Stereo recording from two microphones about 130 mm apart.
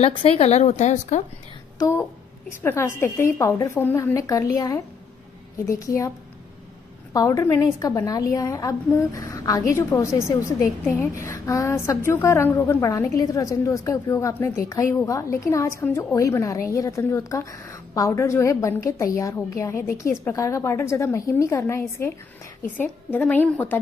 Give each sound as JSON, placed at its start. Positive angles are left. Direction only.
{"t": 0.0, "sound": "speech", "side_deg": 50}
{"t": 1.8, "sound": "a woman's voice", "side_deg": 20}